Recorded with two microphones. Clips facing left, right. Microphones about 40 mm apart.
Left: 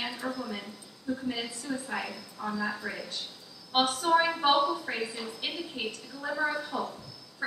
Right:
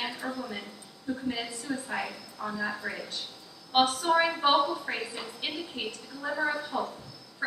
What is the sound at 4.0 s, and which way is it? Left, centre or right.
A woman's voice, centre.